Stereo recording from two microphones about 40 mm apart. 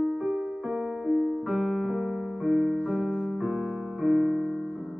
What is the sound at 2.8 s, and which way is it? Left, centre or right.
Music, right.